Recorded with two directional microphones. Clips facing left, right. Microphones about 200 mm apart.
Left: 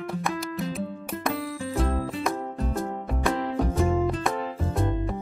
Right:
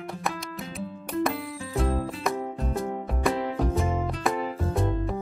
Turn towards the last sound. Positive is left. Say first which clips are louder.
# even
turn(degrees=0)  # may be behind; listen again after turning